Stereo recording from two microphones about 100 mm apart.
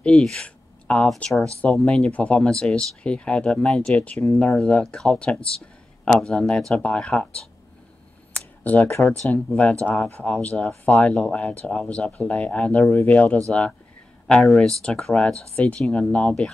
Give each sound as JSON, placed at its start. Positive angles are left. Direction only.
{"t": 0.0, "sound": "speech", "side_deg": 5}
{"t": 8.6, "sound": "speech", "side_deg": 15}